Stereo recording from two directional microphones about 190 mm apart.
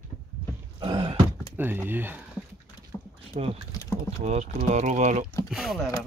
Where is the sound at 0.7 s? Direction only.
25° right (ahead or behind).